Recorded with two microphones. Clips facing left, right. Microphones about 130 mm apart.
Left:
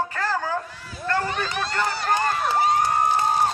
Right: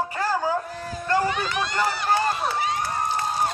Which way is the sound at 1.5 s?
35° left (ahead or behind).